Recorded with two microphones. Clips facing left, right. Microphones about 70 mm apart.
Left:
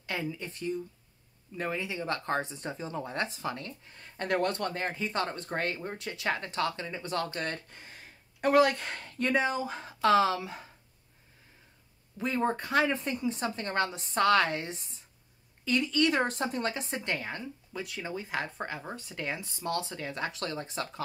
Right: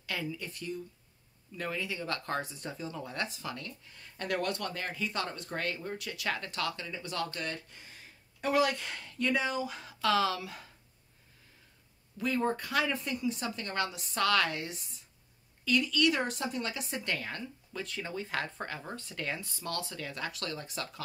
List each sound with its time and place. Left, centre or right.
0.0 s speech: left
12.2 s speech: left